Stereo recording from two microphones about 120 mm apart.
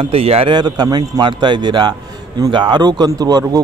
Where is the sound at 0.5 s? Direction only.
35° right (ahead or behind).